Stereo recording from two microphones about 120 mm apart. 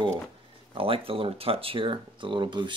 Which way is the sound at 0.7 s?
50° right (ahead or behind).